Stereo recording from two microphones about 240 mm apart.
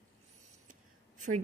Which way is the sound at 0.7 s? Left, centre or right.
Right.